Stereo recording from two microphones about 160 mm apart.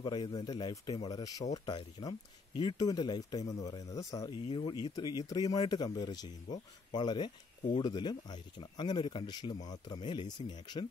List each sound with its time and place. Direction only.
0.0 s speech: 30° left (ahead or behind)
4.4 s speech: 35° left (ahead or behind)